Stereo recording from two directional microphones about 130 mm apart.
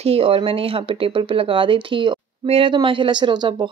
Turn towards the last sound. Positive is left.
turn(degrees=-35)  # may be behind; listen again after turning